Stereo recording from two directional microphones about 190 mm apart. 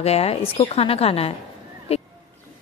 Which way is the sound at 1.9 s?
30° left (ahead or behind).